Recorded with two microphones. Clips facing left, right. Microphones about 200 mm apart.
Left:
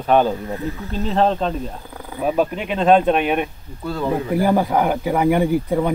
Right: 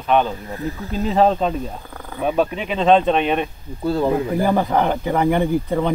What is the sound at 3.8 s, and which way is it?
Speech, 30° right (ahead or behind).